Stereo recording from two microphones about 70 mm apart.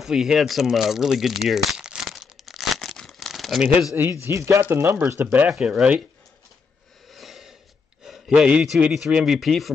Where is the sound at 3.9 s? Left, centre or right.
Right.